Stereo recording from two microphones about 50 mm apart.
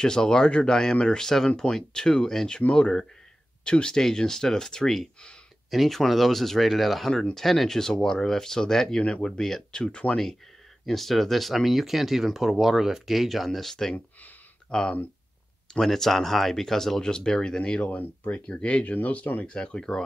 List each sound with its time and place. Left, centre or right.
0.0 s speech: centre
10.9 s speech: centre
17.9 s speech: left
18.5 s speech: left
19.4 s speech: centre